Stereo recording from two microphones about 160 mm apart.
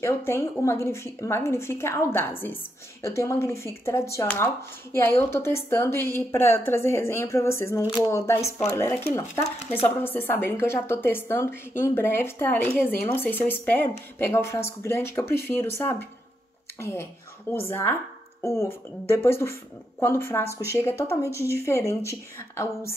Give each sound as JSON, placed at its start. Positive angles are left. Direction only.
{"t": 0.0, "sound": "a woman's voice", "side_deg": 15}